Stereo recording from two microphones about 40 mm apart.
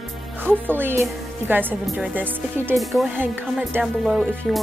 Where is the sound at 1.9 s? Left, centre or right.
Right.